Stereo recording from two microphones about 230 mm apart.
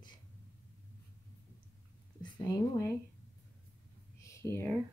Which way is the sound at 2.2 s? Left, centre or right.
Centre.